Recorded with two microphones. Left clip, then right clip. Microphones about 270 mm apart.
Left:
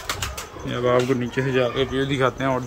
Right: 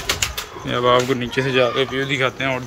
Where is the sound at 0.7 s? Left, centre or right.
Centre.